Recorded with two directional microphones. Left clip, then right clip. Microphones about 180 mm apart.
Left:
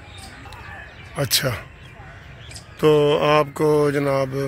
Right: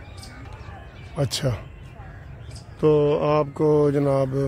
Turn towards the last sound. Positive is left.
turn(degrees=-20)  # may be behind; listen again after turning